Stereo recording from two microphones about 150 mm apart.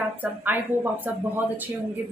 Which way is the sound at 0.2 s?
10° right (ahead or behind).